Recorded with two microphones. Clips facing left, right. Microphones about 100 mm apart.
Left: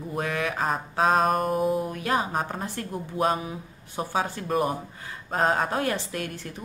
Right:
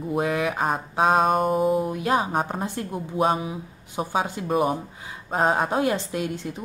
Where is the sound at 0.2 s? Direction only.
15° right (ahead or behind).